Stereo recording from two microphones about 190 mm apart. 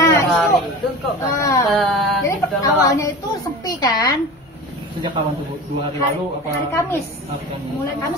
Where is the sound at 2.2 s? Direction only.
15° left (ahead or behind).